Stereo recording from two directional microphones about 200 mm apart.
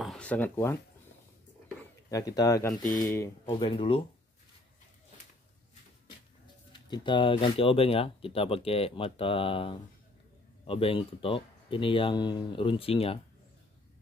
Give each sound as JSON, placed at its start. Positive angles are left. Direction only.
{"t": 0.0, "sound": "speech", "side_deg": 5}
{"t": 1.8, "sound": "speech", "side_deg": 15}
{"t": 3.5, "sound": "speech", "side_deg": 25}
{"t": 6.7, "sound": "speech", "side_deg": 25}